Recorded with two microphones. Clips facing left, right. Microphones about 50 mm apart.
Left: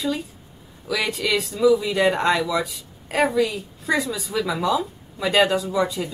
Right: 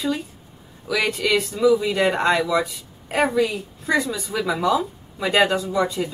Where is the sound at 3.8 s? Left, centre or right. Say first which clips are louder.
Right 1 dB; centre.